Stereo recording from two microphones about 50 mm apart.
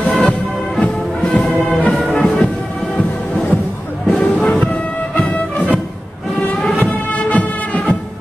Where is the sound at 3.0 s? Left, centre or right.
Left.